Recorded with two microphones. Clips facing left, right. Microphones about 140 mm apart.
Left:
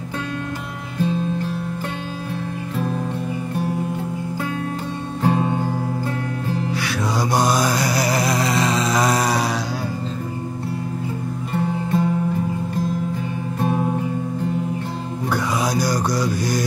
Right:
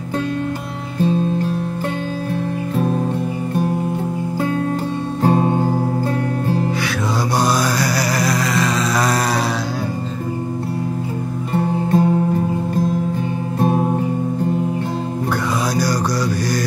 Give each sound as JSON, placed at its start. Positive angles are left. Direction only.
{"t": 5.2, "sound": "music", "side_deg": -40}
{"t": 7.3, "sound": "mantra", "side_deg": 20}
{"t": 11.5, "sound": "music", "side_deg": -45}
{"t": 13.6, "sound": "music", "side_deg": -35}
{"t": 15.6, "sound": "mantra", "side_deg": 20}